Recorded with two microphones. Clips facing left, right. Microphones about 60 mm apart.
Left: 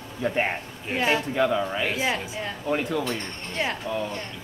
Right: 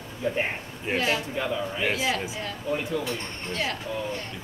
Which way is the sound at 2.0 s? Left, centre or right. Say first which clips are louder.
Left 1 dB; left.